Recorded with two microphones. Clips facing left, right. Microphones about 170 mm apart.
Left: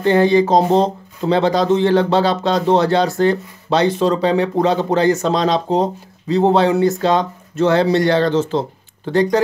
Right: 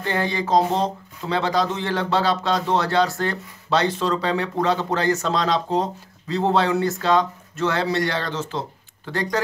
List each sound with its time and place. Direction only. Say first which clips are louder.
0.0 s speech: left 12 dB; 25° left (ahead or behind)